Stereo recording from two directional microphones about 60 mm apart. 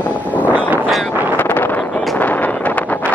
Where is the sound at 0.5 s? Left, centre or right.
Right.